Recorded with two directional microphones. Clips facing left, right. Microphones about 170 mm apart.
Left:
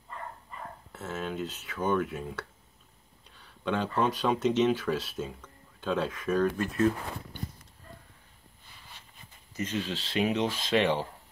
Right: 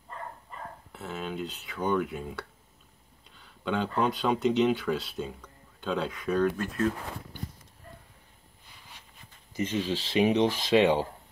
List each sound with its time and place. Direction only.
0.9 s speech: centre (ahead or behind)
9.8 s speech: 20° right (ahead or behind)